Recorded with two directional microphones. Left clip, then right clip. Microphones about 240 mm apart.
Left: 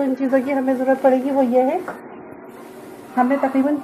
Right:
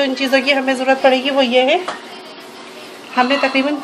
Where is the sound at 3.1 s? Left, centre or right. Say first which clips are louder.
Right 4 dB; right.